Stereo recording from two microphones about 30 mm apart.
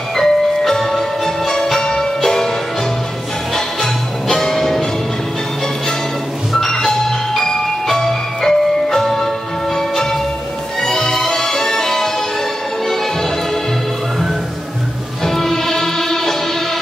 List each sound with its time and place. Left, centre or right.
0.1 s music: centre
3.5 s music: centre
6.5 s music: centre
10.8 s music: centre
15.2 s music: centre